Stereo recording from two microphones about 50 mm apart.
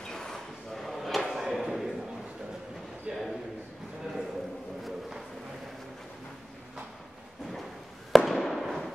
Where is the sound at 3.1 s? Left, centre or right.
Right.